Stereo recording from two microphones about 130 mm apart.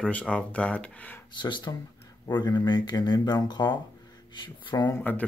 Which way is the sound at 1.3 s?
35° left (ahead or behind).